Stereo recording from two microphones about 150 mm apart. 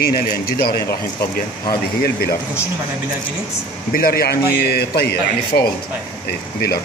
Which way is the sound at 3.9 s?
85° left.